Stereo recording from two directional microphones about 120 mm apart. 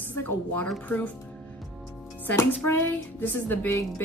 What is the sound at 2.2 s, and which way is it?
Speech, 20° left (ahead or behind).